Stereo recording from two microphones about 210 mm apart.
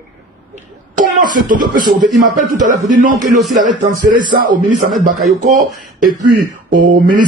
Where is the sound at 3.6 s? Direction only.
40° right (ahead or behind).